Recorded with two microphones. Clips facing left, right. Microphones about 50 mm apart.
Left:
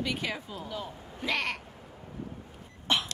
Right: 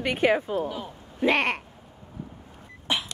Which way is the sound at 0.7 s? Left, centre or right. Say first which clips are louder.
Right 2 dB; centre.